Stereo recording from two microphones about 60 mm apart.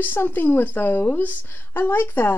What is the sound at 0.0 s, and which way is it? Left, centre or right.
A woman's voice, left.